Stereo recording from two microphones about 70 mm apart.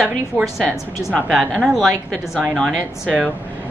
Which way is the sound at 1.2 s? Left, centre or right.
Centre.